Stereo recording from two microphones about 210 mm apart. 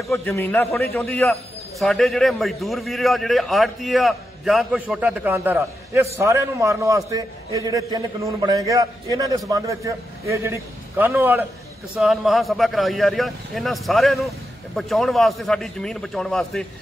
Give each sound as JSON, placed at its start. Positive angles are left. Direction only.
{"t": 0.1, "sound": "a man's voice", "side_deg": 10}